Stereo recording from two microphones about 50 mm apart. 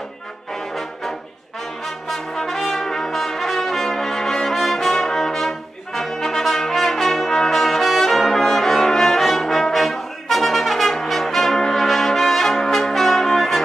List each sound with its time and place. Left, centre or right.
2.0 s brass instrument: centre